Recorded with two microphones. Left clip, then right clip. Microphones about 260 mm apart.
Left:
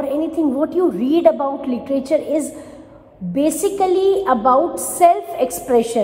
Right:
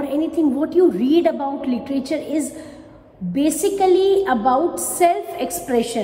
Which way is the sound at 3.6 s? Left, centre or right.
Left.